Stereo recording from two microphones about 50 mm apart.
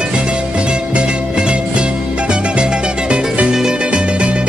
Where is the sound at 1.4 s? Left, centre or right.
Right.